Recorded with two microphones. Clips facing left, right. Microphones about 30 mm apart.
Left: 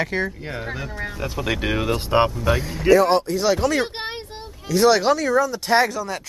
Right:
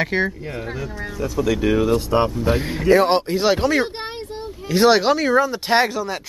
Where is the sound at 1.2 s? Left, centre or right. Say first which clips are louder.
Right 6 dB; left.